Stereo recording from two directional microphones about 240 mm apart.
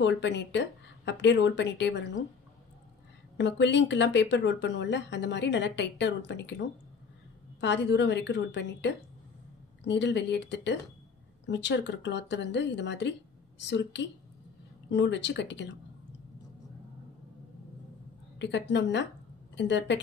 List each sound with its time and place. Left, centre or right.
0.0 s speech: left
3.3 s speech: left
7.6 s speech: left
18.4 s speech: left